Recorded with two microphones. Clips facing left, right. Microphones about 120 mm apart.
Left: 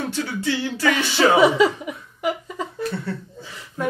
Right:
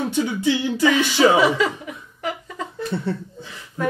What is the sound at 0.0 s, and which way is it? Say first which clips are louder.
Music: right 4 dB; 15° right (ahead or behind).